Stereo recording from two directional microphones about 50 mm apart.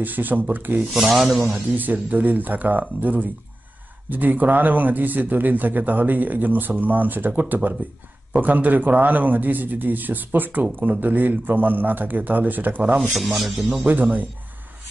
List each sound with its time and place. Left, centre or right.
0.0 s a man's voice: right
0.9 s a man's voice: centre
1.5 s a man's voice: right
13.4 s a man's voice: centre
13.7 s a man's voice: right